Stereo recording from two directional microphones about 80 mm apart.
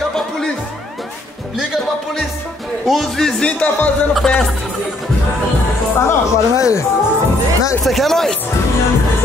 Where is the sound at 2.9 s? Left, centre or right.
Centre.